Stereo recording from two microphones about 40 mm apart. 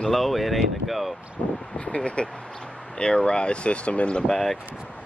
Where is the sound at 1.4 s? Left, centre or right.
Left.